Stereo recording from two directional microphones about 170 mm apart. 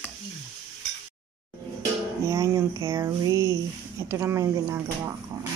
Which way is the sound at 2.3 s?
20° right (ahead or behind).